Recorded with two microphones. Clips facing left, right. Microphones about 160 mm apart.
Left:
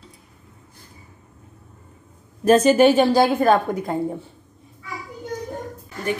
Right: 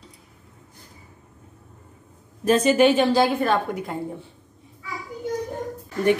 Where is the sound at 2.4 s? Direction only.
40° left (ahead or behind).